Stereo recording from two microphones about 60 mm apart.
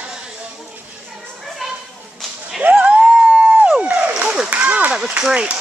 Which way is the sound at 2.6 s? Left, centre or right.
Right.